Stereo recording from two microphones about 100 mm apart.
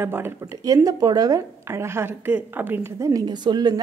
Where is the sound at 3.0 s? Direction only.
40° right (ahead or behind).